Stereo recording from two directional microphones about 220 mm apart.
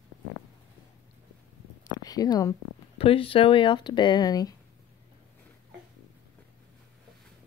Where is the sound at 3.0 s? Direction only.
25° left (ahead or behind).